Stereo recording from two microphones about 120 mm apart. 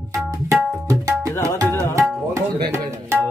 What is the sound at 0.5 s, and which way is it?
Tabla, 25° right (ahead or behind).